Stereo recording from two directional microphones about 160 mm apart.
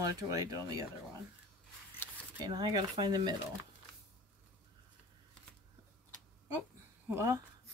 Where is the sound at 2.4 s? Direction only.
25° right (ahead or behind).